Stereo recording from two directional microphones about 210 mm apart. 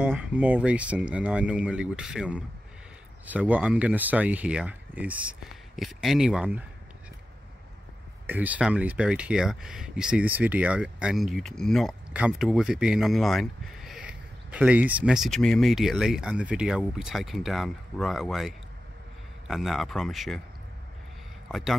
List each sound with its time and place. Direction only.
0.0 s speech: 5° right (ahead or behind)
8.3 s speech: 5° right (ahead or behind)
21.5 s a man's voice: centre (ahead or behind)